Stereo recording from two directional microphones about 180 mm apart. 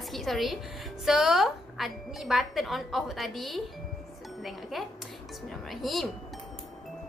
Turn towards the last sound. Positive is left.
turn(degrees=0)  # may be behind; listen again after turning